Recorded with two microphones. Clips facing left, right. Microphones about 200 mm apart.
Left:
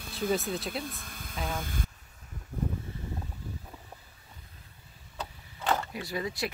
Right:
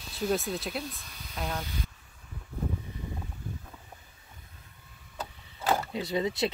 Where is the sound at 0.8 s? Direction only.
50° left (ahead or behind).